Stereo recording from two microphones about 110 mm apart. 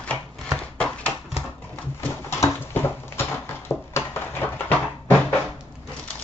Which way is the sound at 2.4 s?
20° left (ahead or behind).